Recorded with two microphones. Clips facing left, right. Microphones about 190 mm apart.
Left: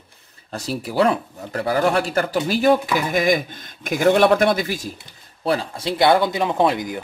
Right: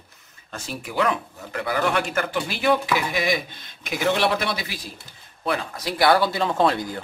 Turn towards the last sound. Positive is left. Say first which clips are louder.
# left 2 dB
turn(degrees=15)  # may be behind; listen again after turning